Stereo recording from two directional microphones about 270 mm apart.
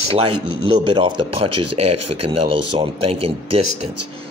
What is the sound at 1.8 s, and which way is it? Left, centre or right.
Speech, right.